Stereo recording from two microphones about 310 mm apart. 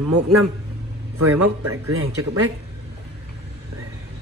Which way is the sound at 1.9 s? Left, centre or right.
Right.